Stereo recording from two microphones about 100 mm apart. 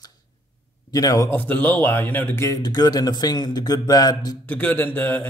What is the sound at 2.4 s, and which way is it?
Speech, 35° left (ahead or behind).